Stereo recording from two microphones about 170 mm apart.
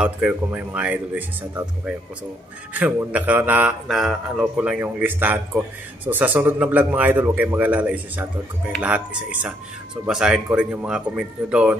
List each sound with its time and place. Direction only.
0.0 s speech: 10° right (ahead or behind)
2.7 s speech: 10° right (ahead or behind)